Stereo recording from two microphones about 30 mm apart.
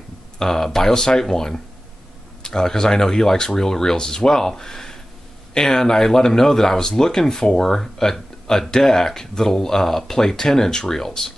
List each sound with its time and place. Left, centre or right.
0.4 s speech: centre
0.9 s speech: left